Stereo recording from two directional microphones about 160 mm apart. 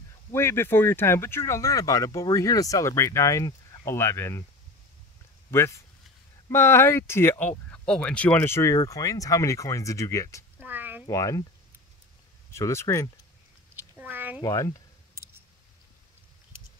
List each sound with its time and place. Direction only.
0.3 s speech: 15° left (ahead or behind)
5.5 s speech: 15° left (ahead or behind)
10.6 s a sound: 10° right (ahead or behind)
11.1 s speech: 20° left (ahead or behind)
12.5 s speech: 20° left (ahead or behind)
13.9 s a sound: 10° right (ahead or behind)
14.4 s speech: 20° left (ahead or behind)